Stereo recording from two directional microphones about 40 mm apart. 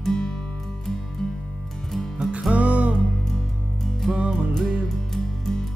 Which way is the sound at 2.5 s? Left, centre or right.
Right.